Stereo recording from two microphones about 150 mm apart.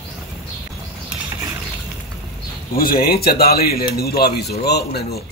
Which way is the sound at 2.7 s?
75° left (ahead or behind).